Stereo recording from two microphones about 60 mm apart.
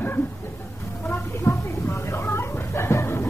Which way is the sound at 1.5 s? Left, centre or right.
Left.